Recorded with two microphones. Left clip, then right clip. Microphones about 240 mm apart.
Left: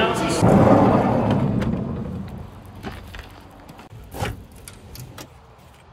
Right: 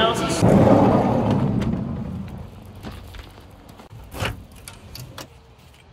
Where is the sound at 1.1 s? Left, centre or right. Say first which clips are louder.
Left 1 dB; centre.